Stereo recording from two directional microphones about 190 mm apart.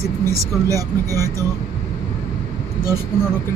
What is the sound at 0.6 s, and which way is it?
Speech, 15° right (ahead or behind).